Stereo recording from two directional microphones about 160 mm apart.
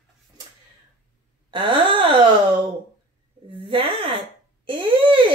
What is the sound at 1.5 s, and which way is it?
Speech, 30° right (ahead or behind).